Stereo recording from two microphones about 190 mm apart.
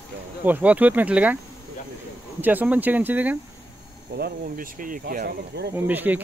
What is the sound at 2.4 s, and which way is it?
Speech, 10° right (ahead or behind).